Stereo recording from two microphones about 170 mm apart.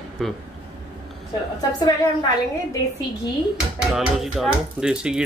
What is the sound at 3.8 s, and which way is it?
Speech, 5° right (ahead or behind).